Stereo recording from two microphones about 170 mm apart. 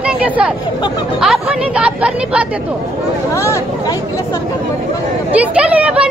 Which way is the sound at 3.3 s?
15° left (ahead or behind).